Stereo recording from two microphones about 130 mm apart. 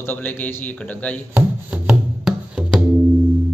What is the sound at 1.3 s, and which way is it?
Chopping, 15° right (ahead or behind).